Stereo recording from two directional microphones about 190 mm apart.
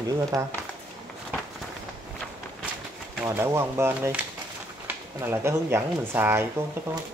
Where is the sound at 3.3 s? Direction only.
15° right (ahead or behind).